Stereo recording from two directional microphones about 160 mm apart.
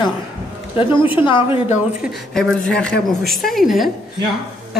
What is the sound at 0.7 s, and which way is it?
Speech, 30° left (ahead or behind).